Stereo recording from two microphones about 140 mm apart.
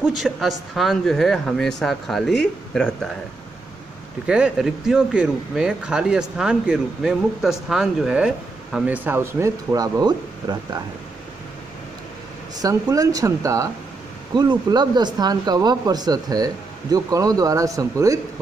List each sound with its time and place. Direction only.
0.0 s speech: centre (ahead or behind)
4.3 s speech: 5° right (ahead or behind); by 10.8 s 30° right (ahead or behind)
12.5 s speech: 25° right (ahead or behind)